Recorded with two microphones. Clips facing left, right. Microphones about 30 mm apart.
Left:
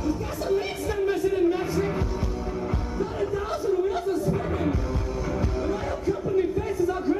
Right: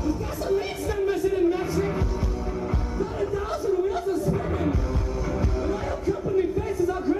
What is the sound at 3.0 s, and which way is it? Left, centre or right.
Music, centre.